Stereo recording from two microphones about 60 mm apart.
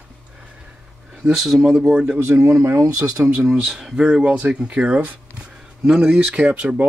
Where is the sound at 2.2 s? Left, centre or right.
Right.